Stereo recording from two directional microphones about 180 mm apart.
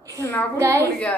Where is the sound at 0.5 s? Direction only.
15° right (ahead or behind).